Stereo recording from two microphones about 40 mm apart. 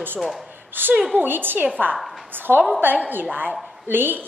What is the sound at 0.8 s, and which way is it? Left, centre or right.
Speech, right.